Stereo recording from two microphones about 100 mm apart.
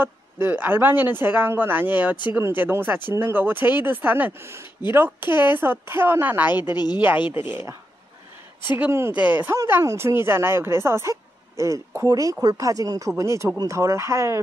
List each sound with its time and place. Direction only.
0.0 s speech: 20° right (ahead or behind)
6.7 s a woman's voice: 45° left (ahead or behind)
7.3 s speech: 25° right (ahead or behind)
8.7 s speech: 20° right (ahead or behind)